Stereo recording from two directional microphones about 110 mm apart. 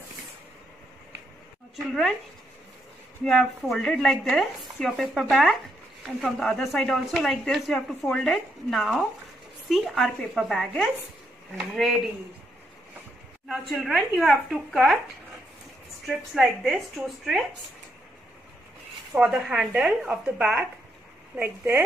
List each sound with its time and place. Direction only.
3.3 s speech: 5° left (ahead or behind)
13.5 s speech: centre (ahead or behind)
16.1 s speech: centre (ahead or behind)
19.1 s speech: 5° right (ahead or behind)
21.4 s speech: 20° right (ahead or behind)